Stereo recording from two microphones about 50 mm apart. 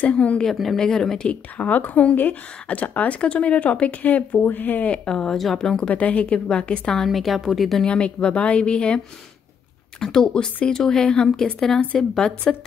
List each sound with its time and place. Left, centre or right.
0.0 s a woman's voice: left
0.5 s a woman's voice: centre
0.7 s a woman's voice: centre; by 4.9 s left
4.9 s a woman's voice: centre
5.9 s a woman's voice: left
7.1 s a woman's voice: centre
7.8 s a woman's voice: left